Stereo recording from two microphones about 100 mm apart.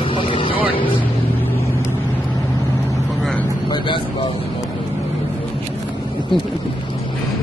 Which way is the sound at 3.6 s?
50° left (ahead or behind).